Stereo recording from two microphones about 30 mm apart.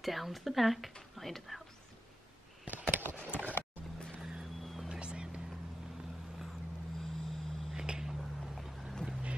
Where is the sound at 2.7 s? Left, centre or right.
Right.